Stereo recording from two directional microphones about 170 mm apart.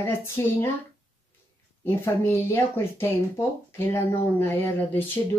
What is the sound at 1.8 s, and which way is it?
Speech, 15° left (ahead or behind).